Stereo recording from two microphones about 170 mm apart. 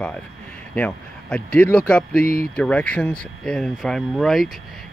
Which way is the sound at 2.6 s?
10° left (ahead or behind).